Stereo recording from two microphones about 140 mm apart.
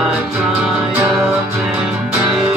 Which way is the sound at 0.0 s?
10° right (ahead or behind).